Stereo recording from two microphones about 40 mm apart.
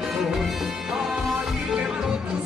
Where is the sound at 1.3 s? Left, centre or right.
Centre.